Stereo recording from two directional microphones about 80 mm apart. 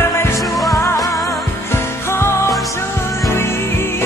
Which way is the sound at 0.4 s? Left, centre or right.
Centre.